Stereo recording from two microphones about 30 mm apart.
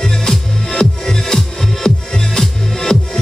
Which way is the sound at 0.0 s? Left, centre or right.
Centre.